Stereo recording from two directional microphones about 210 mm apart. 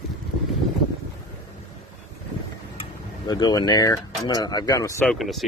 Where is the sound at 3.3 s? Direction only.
20° left (ahead or behind).